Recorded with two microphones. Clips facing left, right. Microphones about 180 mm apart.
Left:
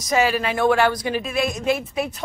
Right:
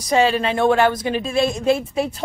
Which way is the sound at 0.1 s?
25° right (ahead or behind).